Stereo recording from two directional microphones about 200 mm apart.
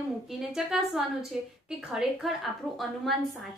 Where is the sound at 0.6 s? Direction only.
5° right (ahead or behind).